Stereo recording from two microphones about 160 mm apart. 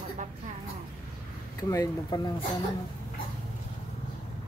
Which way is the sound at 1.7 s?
25° left (ahead or behind).